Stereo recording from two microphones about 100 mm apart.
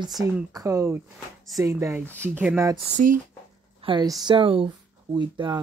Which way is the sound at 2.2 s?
15° right (ahead or behind).